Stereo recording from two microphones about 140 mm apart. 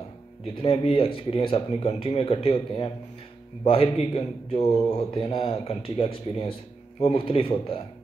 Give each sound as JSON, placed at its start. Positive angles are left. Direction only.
{"t": 0.6, "sound": "a man's voice", "side_deg": 40}